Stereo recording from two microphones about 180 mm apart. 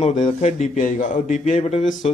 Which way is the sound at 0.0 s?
40° left (ahead or behind).